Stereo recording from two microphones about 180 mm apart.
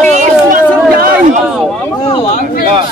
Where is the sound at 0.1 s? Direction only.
45° right (ahead or behind).